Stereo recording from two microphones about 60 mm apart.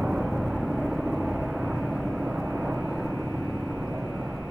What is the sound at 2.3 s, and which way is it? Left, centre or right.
Vehicle, right.